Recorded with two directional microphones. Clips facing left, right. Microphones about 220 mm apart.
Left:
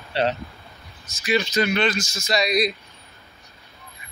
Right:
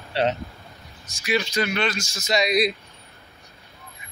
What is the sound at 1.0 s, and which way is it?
Speech, 10° right (ahead or behind).